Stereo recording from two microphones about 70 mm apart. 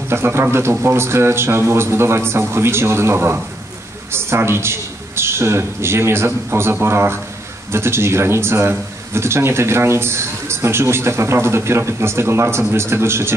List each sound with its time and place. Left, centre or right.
0.1 s speech: right